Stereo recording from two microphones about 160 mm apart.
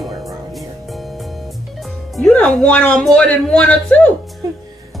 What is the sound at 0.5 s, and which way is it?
Music, centre (ahead or behind).